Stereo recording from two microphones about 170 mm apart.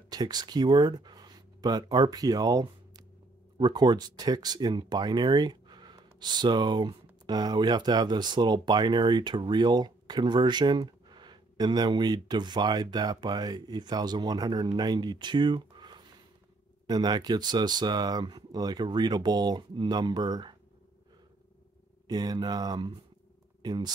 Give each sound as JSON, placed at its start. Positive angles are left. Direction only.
{"t": 0.1, "sound": "speech", "side_deg": -25}
{"t": 22.0, "sound": "speech", "side_deg": -25}